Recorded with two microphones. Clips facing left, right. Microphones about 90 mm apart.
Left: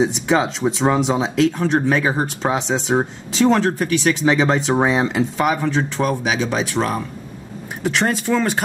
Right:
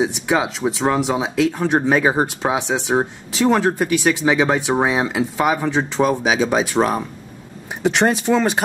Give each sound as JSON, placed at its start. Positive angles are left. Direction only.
{"t": 0.0, "sound": "speech", "side_deg": -5}